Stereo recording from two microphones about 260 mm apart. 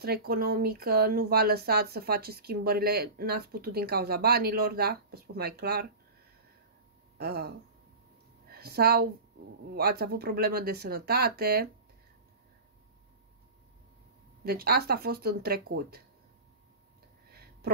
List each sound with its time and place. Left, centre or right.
0.0 s speech: right
7.2 s a woman's voice: right
14.4 s speech: right
17.3 s a sound: right